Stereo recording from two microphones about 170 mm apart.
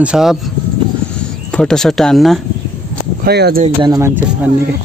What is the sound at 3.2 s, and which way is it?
Speech, 70° right (ahead or behind).